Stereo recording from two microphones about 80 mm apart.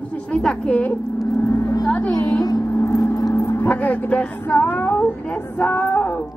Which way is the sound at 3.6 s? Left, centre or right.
Centre.